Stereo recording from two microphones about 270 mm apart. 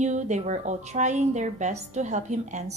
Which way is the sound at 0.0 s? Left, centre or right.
Right.